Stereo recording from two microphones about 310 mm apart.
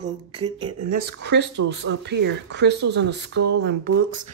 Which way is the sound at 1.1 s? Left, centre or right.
Right.